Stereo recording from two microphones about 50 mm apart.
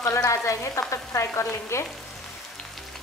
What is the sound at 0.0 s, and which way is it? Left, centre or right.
Frying, left.